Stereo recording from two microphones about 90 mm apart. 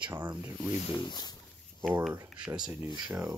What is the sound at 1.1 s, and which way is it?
Speech, 50° left (ahead or behind).